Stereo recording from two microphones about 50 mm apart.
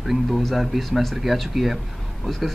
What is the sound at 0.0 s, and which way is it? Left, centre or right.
Speech, centre.